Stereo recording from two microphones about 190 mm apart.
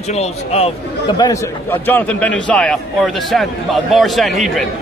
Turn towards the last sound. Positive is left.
turn(degrees=0)  # may be behind; listen again after turning